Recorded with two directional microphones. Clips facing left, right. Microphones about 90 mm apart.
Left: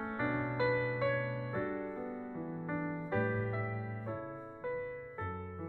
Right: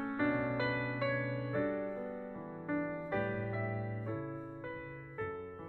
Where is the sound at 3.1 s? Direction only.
20° left (ahead or behind).